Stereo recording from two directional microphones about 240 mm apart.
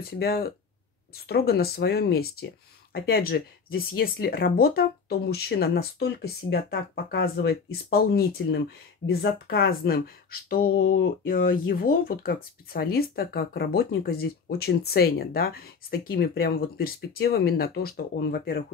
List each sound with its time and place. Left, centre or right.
0.0 s speech: left